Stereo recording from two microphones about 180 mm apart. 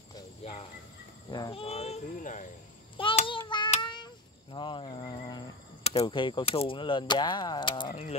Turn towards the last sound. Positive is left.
turn(degrees=25)  # may be behind; listen again after turning